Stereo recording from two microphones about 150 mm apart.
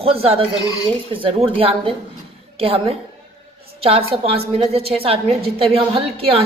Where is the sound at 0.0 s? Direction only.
40° right (ahead or behind).